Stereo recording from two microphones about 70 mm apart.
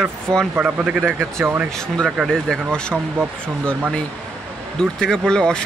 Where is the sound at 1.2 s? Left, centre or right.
Right.